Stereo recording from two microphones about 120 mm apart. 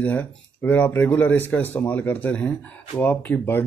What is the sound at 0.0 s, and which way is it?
A man's voice, 15° left (ahead or behind).